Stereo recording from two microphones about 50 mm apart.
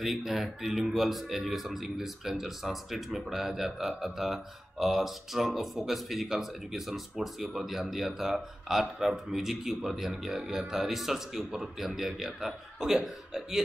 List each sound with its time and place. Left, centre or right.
0.0 s speech: centre